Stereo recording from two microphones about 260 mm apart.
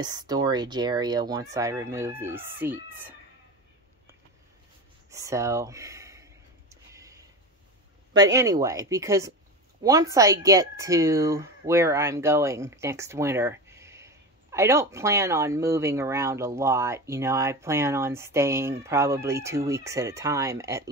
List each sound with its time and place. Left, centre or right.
0.0 s speech: centre
5.1 s a sound: centre
8.1 s speech: centre